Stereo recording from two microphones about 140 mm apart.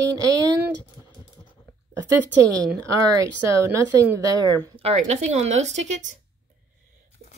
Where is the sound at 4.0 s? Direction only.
25° right (ahead or behind).